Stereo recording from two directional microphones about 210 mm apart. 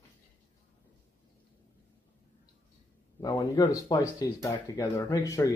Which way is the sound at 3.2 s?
20° left (ahead or behind).